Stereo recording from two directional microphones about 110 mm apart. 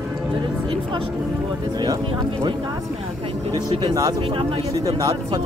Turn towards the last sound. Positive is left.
turn(degrees=-35)  # may be behind; listen again after turning